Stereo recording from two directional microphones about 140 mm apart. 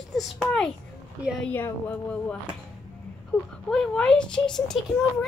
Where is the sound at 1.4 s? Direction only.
10° left (ahead or behind).